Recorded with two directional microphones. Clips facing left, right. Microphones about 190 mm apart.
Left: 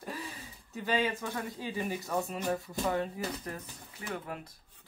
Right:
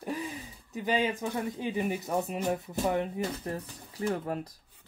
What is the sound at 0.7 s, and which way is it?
Speech, 15° right (ahead or behind).